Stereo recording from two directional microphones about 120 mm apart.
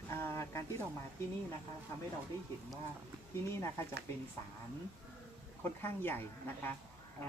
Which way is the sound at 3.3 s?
20° left (ahead or behind).